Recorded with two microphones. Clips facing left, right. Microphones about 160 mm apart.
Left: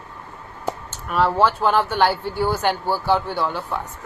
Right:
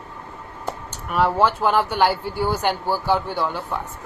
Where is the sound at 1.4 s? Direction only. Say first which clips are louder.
Left 1 dB; 10° right (ahead or behind).